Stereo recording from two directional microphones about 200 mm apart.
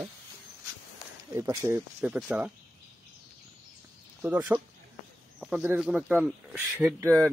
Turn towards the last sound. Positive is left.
turn(degrees=-15)  # may be behind; listen again after turning